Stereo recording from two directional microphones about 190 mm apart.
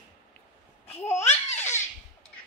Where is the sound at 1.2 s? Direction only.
35° left (ahead or behind).